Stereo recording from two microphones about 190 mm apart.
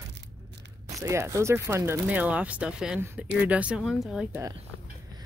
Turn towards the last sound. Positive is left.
turn(degrees=-5)  # may be behind; listen again after turning